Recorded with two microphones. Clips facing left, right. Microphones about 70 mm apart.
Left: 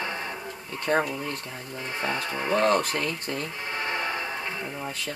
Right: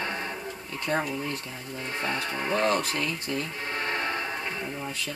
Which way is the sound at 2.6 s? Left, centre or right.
Left.